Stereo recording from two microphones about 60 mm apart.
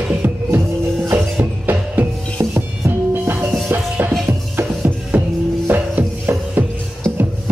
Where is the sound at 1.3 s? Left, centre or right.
Right.